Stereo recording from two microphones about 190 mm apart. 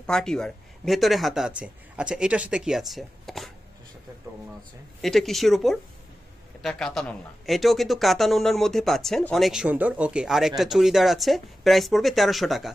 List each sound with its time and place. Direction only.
0.0 s speech: 5° left (ahead or behind)
5.0 s speech: centre (ahead or behind)